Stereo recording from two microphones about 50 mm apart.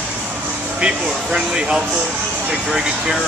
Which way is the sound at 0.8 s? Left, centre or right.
Centre.